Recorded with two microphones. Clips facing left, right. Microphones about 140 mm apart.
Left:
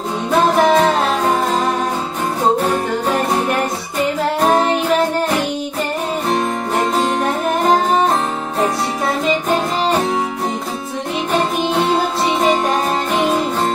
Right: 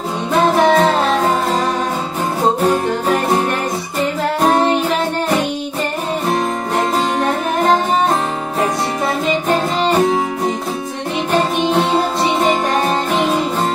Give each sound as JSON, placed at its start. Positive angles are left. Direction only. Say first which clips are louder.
{"t": 0.3, "sound": "music", "louder": "even", "side_deg": 0}
{"t": 6.3, "sound": "music", "louder": "even", "side_deg": 0}